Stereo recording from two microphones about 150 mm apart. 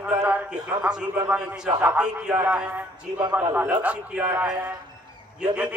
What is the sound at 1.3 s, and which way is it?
A man's voice, 5° right (ahead or behind).